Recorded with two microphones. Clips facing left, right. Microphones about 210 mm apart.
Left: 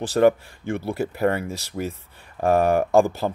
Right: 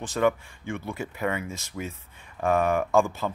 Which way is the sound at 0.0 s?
35° left (ahead or behind).